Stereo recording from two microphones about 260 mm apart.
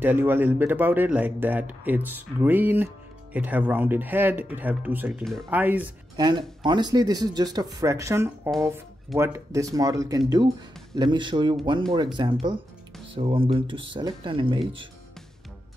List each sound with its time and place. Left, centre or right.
0.0 s speech: centre
6.6 s speech: centre